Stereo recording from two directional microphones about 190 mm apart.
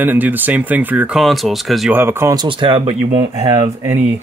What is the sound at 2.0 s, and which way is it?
Speech, 10° right (ahead or behind).